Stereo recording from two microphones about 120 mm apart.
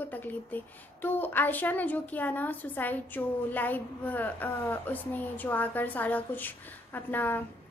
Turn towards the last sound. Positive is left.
turn(degrees=15)  # may be behind; listen again after turning